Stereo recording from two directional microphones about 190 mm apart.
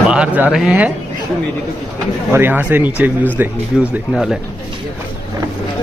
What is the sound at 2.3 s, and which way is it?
Speech, 10° right (ahead or behind).